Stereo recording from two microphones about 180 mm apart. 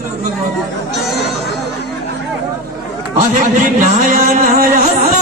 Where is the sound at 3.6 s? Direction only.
50° right (ahead or behind).